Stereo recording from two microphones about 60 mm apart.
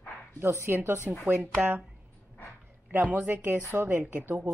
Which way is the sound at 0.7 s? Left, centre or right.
Right.